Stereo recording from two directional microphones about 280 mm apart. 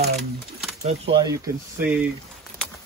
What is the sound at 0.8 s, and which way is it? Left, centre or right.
Speech, centre.